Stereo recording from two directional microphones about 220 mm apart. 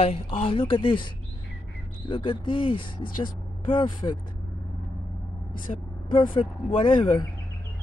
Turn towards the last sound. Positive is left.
turn(degrees=20)  # may be behind; listen again after turning